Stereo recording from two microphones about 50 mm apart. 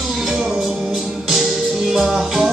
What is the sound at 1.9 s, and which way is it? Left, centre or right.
Music, centre.